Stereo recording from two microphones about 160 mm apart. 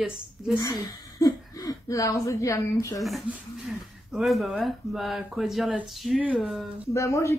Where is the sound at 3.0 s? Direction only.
Centre (ahead or behind).